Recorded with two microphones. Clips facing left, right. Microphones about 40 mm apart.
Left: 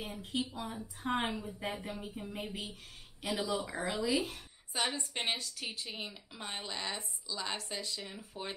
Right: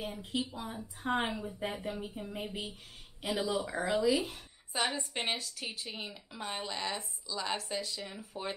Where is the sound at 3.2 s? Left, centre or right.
Centre.